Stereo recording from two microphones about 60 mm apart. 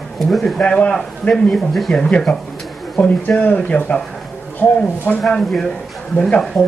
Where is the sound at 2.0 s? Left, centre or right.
Centre.